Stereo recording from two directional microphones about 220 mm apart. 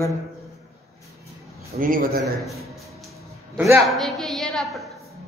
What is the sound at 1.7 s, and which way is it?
Speech, 40° right (ahead or behind).